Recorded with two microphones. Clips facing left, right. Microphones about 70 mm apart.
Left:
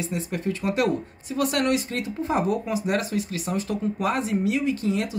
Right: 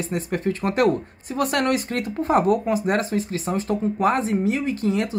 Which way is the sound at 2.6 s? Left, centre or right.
Right.